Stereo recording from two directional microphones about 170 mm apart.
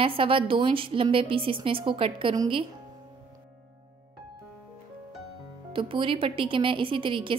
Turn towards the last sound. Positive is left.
turn(degrees=-30)  # may be behind; listen again after turning